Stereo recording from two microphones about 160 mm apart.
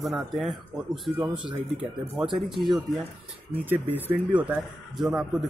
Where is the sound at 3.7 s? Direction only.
10° right (ahead or behind).